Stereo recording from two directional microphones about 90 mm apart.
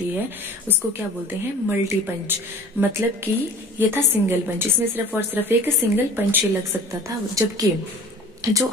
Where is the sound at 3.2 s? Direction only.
25° right (ahead or behind).